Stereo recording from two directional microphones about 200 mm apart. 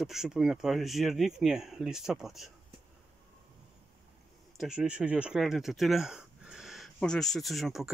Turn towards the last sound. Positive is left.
turn(degrees=0)  # may be behind; listen again after turning